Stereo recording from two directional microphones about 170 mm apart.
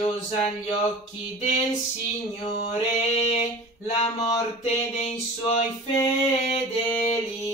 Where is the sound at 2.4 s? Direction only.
40° left (ahead or behind).